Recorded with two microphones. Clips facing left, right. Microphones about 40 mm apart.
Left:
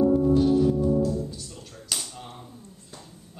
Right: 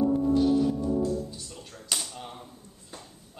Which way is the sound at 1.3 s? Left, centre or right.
Centre.